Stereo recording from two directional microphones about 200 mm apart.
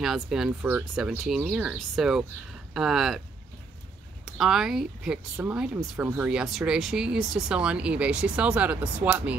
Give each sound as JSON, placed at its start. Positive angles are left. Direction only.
{"t": 0.0, "sound": "speech", "side_deg": 0}
{"t": 4.4, "sound": "speech", "side_deg": 0}